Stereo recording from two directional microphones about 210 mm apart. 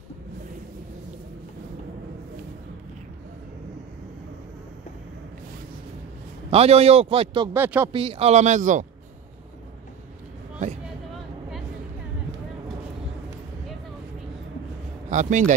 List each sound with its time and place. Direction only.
6.5 s a man's voice: 30° right (ahead or behind)
7.5 s speech: 10° right (ahead or behind)
7.9 s speech: 25° right (ahead or behind)
15.0 s speech: 35° right (ahead or behind)